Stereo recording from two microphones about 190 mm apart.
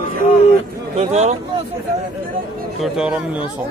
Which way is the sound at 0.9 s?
35° right (ahead or behind).